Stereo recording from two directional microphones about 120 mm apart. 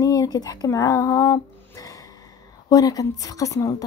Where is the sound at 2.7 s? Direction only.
30° left (ahead or behind).